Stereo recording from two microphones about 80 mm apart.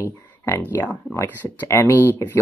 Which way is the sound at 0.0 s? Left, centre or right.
Left.